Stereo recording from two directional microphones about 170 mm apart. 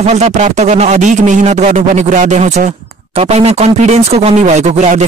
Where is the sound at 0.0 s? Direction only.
40° right (ahead or behind).